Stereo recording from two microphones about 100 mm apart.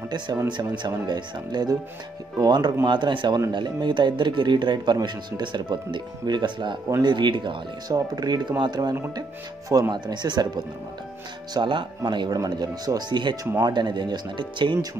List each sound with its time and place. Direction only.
0.8 s speech: 45° right (ahead or behind)
2.9 s speech: 55° right (ahead or behind)